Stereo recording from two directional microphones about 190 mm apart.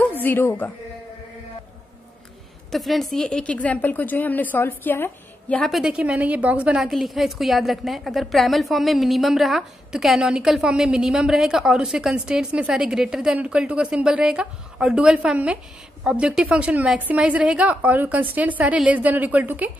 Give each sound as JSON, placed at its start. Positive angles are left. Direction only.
{"t": 0.0, "sound": "a woman's voice", "side_deg": 10}
{"t": 2.7, "sound": "a woman's voice", "side_deg": 0}